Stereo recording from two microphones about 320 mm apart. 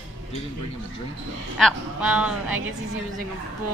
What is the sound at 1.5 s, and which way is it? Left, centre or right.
A woman's voice, centre.